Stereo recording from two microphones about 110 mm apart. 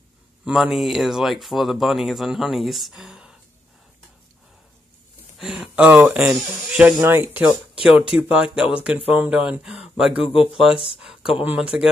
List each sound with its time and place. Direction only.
0.5 s speech: centre (ahead or behind)
5.4 s speech: 5° right (ahead or behind)